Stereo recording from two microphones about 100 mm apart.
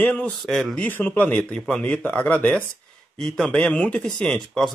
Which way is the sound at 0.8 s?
20° left (ahead or behind).